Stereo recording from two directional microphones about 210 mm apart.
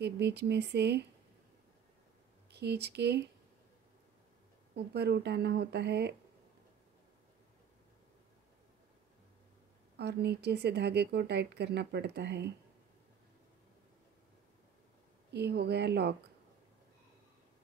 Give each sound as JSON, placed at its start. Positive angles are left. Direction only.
{"t": 0.0, "sound": "speech", "side_deg": -55}
{"t": 2.5, "sound": "speech", "side_deg": -50}
{"t": 4.7, "sound": "speech", "side_deg": -50}
{"t": 9.9, "sound": "speech", "side_deg": -50}
{"t": 15.3, "sound": "speech", "side_deg": -50}